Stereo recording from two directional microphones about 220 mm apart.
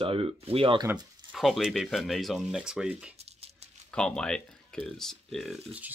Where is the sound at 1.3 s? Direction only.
Centre (ahead or behind).